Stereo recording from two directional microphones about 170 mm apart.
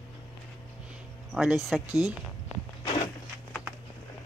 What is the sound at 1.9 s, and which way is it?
Speech, 20° left (ahead or behind).